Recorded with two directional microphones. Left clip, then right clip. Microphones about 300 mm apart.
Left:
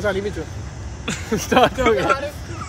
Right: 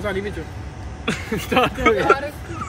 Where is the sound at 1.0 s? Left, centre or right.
Centre.